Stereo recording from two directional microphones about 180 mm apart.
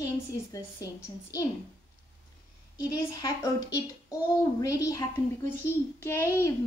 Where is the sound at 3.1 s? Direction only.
20° left (ahead or behind).